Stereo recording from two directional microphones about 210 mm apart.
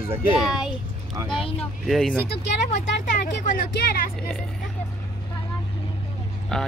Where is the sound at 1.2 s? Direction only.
25° left (ahead or behind).